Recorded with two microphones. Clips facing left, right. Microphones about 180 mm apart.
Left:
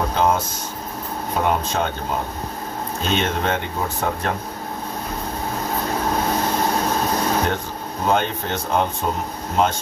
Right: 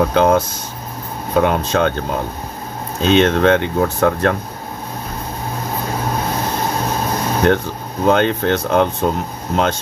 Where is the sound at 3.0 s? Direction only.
80° right.